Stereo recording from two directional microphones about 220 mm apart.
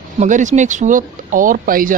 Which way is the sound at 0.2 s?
35° right (ahead or behind).